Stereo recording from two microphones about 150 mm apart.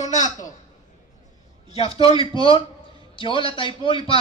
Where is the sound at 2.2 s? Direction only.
35° left (ahead or behind).